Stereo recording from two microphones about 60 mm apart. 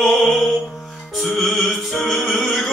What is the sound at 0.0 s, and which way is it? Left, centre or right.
Music, left.